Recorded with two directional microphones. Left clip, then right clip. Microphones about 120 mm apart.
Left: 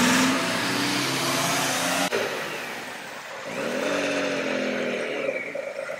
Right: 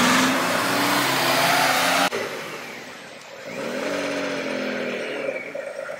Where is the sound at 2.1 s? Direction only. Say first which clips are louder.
Even; centre (ahead or behind).